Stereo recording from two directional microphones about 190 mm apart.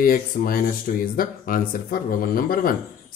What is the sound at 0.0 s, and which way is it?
Speech, 50° left (ahead or behind).